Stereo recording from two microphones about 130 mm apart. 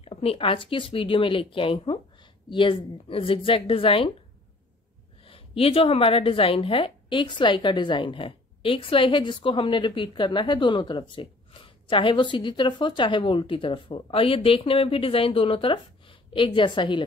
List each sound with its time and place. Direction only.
0.0 s speech: 45° left (ahead or behind)
5.2 s a woman's voice: 45° left (ahead or behind)